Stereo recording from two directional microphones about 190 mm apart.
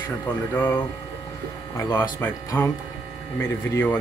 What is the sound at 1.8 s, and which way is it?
Speech, 15° left (ahead or behind).